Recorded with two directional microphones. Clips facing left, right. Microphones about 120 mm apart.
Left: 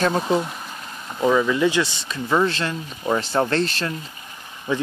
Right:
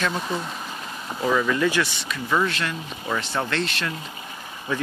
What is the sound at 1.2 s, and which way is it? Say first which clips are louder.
Speech: left 3 dB; 15° left (ahead or behind).